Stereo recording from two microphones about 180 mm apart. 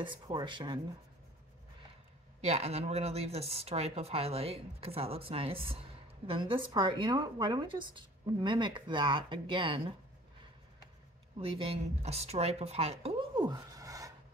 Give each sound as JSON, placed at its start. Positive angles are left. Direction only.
{"t": 0.0, "sound": "a woman's voice", "side_deg": -25}
{"t": 2.4, "sound": "a woman's voice", "side_deg": -35}
{"t": 11.3, "sound": "speech", "side_deg": -30}